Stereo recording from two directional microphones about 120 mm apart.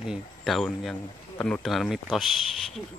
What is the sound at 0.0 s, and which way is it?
Speech, centre (ahead or behind).